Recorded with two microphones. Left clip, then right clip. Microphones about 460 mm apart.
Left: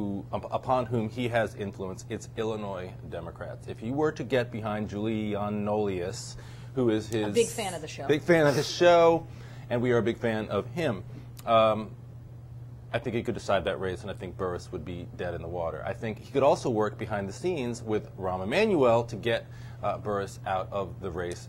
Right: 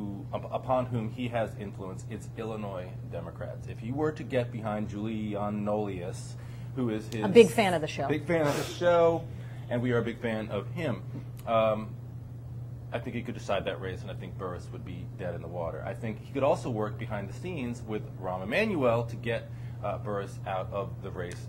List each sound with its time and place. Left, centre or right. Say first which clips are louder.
0.3 s speech: left 1 dB; left
7.3 s a woman's voice: right 10 dB; right
8.1 s speech: left 7 dB; left
9.7 s speech: left 4 dB; left
12.9 s speech: left 6 dB; left